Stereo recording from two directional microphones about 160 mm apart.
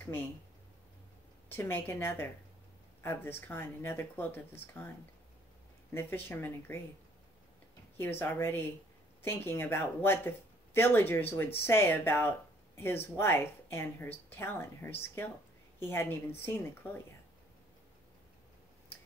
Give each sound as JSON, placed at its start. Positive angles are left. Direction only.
{"t": 0.0, "sound": "speech", "side_deg": 15}
{"t": 1.5, "sound": "speech", "side_deg": 15}
{"t": 5.9, "sound": "speech", "side_deg": 15}
{"t": 8.0, "sound": "speech", "side_deg": 15}